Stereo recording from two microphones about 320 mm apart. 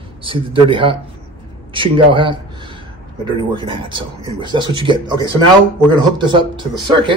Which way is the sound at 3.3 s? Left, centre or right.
Centre.